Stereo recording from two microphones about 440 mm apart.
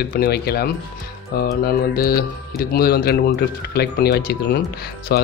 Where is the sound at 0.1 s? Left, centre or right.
Left.